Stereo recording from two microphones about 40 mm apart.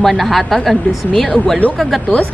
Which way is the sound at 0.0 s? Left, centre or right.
Centre.